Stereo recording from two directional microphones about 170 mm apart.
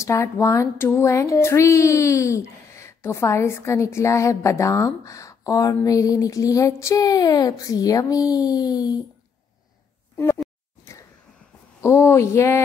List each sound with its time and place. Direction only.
0.0 s speech: 15° left (ahead or behind)
10.1 s a sound: 15° left (ahead or behind)
11.8 s speech: 15° left (ahead or behind)